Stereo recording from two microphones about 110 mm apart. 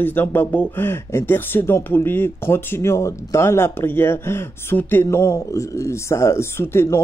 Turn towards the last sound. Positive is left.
turn(degrees=20)  # may be behind; listen again after turning